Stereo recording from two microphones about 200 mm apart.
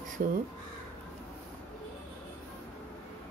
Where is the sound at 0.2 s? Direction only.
45° right (ahead or behind).